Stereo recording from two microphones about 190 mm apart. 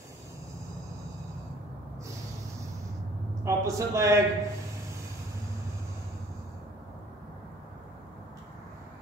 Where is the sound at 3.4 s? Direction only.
15° right (ahead or behind).